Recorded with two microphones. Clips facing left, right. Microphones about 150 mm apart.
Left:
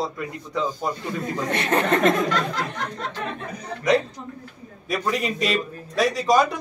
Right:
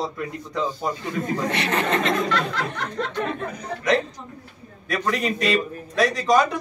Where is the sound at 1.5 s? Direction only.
45° left (ahead or behind).